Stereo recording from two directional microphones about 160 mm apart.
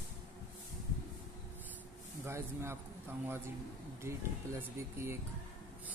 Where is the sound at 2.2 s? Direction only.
15° right (ahead or behind).